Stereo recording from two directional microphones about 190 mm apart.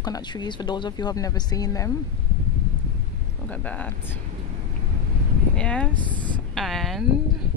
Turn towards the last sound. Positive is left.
turn(degrees=0)  # may be behind; listen again after turning